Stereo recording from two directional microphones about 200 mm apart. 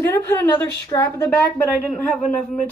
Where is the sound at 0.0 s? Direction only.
10° left (ahead or behind).